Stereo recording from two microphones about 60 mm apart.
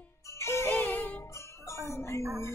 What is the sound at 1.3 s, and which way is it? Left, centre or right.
Music, left.